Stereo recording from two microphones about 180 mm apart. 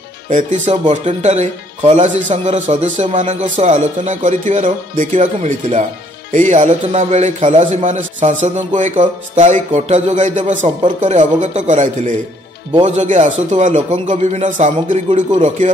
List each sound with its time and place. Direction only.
0.3 s speech: 40° right (ahead or behind)